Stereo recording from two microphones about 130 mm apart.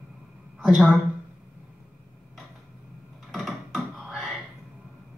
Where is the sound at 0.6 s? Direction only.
5° right (ahead or behind).